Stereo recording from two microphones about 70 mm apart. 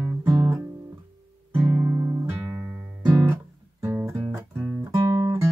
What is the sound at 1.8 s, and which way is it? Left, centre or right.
Music, right.